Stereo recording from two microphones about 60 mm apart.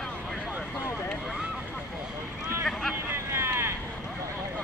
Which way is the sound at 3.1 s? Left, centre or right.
Right.